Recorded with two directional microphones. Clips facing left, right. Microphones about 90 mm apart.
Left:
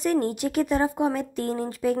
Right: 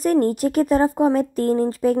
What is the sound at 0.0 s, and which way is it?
A woman's voice, 45° right (ahead or behind).